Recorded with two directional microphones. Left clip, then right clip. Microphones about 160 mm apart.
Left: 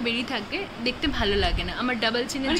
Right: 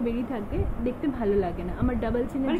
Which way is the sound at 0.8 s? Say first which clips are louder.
Left 2 dB; centre (ahead or behind).